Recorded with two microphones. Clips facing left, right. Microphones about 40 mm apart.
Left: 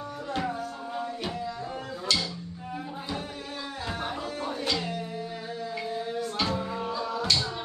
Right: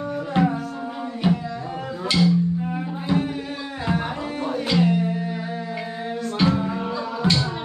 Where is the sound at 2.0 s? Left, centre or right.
Right.